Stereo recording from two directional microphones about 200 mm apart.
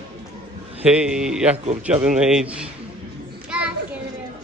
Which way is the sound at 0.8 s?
5° right (ahead or behind).